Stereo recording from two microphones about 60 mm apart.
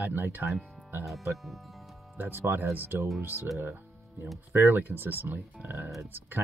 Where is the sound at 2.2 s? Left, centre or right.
Right.